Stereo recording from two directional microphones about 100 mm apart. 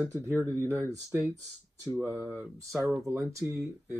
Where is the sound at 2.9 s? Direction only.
30° right (ahead or behind).